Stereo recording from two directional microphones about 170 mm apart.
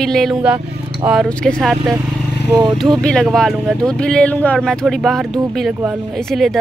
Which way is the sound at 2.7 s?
Centre (ahead or behind).